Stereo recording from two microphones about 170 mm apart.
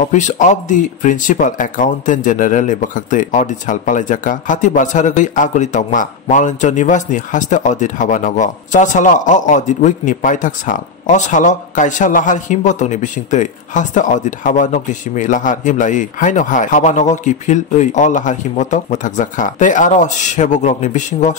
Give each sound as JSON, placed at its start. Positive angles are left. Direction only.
{"t": 0.1, "sound": "speech", "side_deg": 45}